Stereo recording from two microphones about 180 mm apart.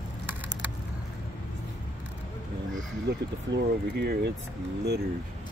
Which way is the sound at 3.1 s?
70° right (ahead or behind).